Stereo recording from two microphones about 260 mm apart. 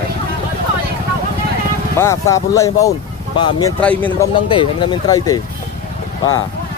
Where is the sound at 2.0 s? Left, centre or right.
Centre.